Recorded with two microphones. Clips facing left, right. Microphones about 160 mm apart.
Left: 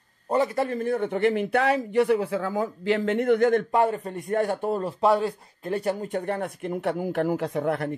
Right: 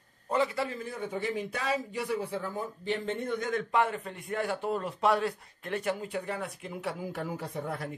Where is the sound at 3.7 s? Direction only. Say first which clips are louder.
Left 6 dB; 35° left (ahead or behind); by 7.9 s 80° left.